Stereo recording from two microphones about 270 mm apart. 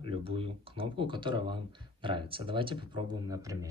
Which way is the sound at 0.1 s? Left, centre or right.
Centre.